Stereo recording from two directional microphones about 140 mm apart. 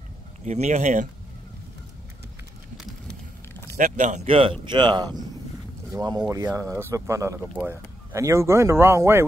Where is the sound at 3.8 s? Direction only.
65° right (ahead or behind).